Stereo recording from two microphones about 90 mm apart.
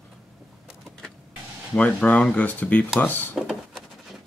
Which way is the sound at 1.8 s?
15° left (ahead or behind).